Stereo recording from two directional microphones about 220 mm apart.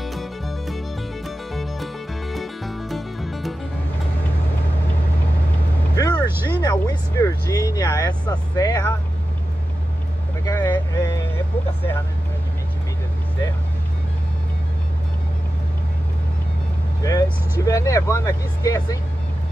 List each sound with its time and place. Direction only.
0.0 s music: centre (ahead or behind)
5.9 s vehicle: 20° left (ahead or behind)
8.3 s speech: 15° left (ahead or behind)
10.4 s vehicle: 10° left (ahead or behind)
17.0 s speech: 15° left (ahead or behind)